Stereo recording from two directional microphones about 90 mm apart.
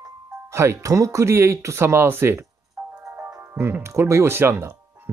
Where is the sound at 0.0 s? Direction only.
30° right (ahead or behind).